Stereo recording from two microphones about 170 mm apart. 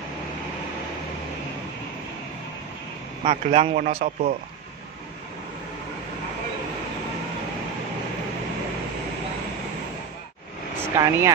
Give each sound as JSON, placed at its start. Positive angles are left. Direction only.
{"t": 3.3, "sound": "a man's voice", "side_deg": -40}
{"t": 10.8, "sound": "speech", "side_deg": -15}